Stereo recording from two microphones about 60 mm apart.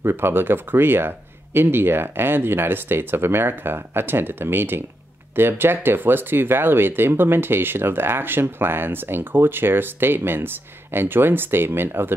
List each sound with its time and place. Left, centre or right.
0.0 s speech: right